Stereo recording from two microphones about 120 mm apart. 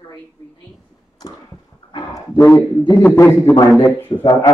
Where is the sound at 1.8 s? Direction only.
45° left (ahead or behind).